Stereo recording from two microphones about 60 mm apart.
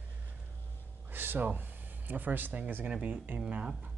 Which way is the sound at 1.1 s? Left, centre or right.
Right.